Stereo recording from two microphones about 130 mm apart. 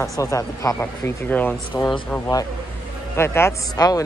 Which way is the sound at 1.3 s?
15° left (ahead or behind).